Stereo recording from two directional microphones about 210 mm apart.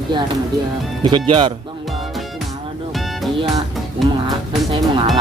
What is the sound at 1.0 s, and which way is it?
Speech, 25° right (ahead or behind).